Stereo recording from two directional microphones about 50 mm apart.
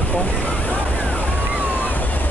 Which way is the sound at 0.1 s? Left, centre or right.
Left.